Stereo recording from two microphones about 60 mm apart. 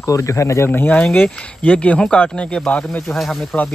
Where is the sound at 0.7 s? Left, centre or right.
Left.